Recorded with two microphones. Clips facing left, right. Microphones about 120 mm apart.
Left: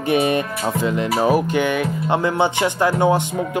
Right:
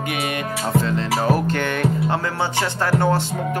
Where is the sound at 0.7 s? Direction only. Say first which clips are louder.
Left 1 dB; 15° left (ahead or behind).